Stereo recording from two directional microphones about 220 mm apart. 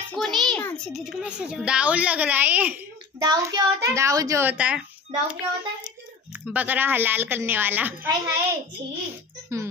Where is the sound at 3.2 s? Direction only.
20° right (ahead or behind).